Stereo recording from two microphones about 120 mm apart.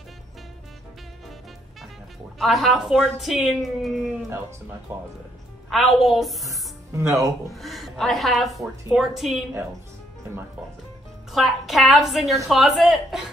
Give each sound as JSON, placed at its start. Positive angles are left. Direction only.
{"t": 2.3, "sound": "speech", "side_deg": 0}
{"t": 4.9, "sound": "speech", "side_deg": -20}
{"t": 5.7, "sound": "speech", "side_deg": 0}
{"t": 6.5, "sound": "music", "side_deg": -25}
{"t": 7.2, "sound": "speech", "side_deg": 0}
{"t": 11.3, "sound": "speech", "side_deg": 0}